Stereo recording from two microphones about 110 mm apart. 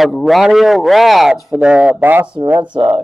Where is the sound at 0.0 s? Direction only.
Centre (ahead or behind); by 2.2 s 15° right (ahead or behind).